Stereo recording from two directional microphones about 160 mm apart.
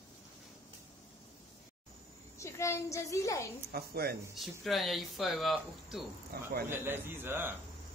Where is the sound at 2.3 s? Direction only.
15° left (ahead or behind).